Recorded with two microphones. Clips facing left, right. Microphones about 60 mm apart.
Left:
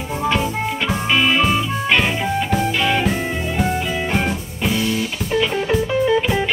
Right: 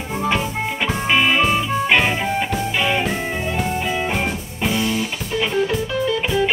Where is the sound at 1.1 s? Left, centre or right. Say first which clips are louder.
Even; centre.